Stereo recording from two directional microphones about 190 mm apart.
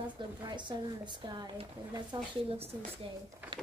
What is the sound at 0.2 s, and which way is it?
Speech, 25° right (ahead or behind).